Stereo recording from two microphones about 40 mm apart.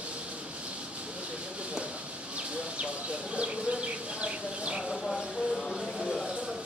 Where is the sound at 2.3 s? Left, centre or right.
Right.